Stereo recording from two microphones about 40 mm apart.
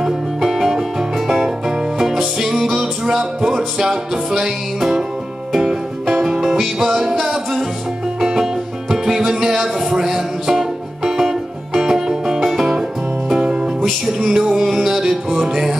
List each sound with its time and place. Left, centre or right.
0.0 s music: centre
13.3 s music: centre
14.0 s music: centre